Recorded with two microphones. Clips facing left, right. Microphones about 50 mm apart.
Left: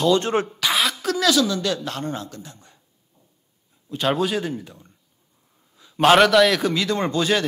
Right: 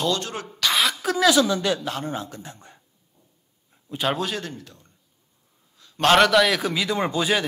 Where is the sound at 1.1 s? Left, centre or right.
Centre.